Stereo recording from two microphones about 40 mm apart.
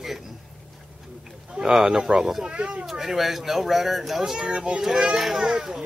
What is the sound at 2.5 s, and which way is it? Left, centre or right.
Speech, right.